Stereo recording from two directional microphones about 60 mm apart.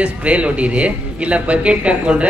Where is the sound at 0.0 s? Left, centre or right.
Right.